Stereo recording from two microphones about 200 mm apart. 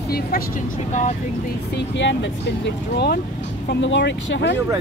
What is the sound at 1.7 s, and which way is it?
Speech, 60° left (ahead or behind).